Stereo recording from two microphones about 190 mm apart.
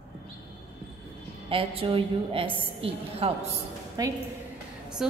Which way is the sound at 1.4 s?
30° right (ahead or behind).